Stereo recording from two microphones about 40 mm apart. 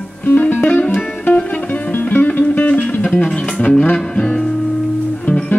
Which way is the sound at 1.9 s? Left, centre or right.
Left.